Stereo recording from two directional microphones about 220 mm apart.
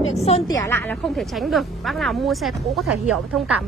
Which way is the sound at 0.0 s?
30° left (ahead or behind).